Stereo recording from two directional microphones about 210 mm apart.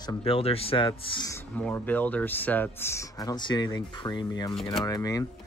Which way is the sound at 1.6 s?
10° left (ahead or behind).